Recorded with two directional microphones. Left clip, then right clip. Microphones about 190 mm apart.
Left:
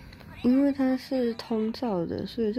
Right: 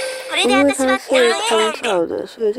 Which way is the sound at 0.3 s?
80° right.